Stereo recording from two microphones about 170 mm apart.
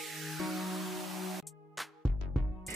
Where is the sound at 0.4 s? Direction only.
Centre (ahead or behind).